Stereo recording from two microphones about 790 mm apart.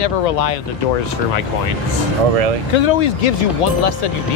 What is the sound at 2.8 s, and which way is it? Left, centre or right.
Speech, left.